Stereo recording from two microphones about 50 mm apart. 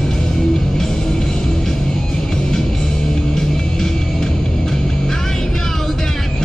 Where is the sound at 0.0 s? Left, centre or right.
Centre.